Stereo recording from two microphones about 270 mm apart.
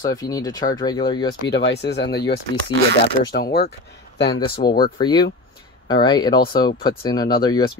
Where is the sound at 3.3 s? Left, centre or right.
Left.